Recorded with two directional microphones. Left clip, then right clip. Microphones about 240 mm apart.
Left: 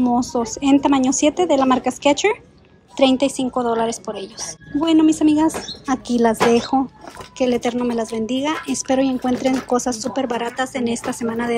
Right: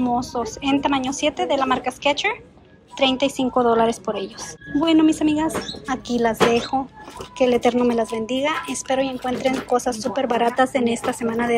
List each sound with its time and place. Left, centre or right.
0.0 s a woman's voice: left